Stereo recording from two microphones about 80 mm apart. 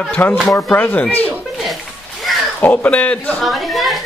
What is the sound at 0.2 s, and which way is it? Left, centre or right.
Speech, left.